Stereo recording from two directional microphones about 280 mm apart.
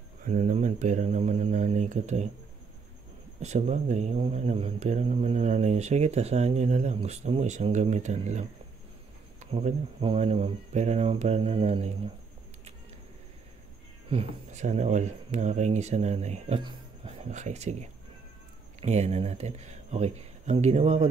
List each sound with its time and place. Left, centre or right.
0.2 s speech: right
3.3 s speech: right
14.0 s speech: right